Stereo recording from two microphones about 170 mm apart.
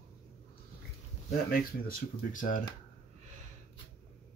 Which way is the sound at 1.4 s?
60° left (ahead or behind).